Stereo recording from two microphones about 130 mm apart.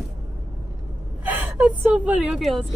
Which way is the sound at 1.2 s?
15° right (ahead or behind).